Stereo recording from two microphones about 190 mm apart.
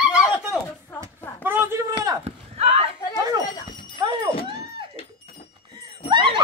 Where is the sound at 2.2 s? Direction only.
30° right (ahead or behind).